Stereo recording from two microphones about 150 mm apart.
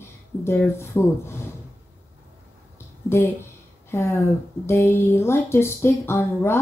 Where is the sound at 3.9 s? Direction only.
20° left (ahead or behind).